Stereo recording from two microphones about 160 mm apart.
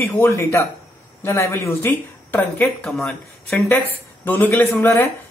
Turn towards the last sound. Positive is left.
turn(degrees=15)  # may be behind; listen again after turning